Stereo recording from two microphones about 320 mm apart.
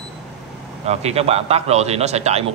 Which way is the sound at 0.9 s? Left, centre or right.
Centre.